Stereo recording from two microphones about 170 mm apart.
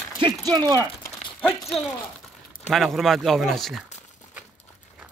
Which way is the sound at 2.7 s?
Centre (ahead or behind).